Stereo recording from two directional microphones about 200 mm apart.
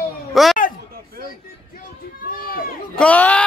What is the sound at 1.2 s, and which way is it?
Speech, 45° left (ahead or behind).